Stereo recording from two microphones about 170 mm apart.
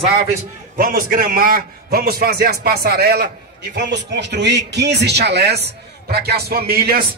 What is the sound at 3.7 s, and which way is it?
A man's voice, 80° right.